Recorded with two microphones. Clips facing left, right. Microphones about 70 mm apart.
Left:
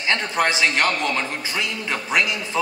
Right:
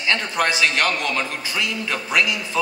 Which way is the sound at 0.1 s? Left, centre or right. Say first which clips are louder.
Even; left.